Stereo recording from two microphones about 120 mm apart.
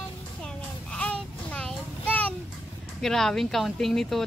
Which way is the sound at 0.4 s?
5° left (ahead or behind).